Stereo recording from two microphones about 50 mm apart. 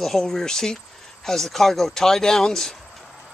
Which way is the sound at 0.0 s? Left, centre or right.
Centre.